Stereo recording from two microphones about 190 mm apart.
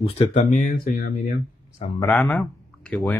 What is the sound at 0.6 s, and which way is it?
Speech, 50° left (ahead or behind).